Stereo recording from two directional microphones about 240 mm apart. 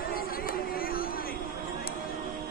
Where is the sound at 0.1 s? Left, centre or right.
Left.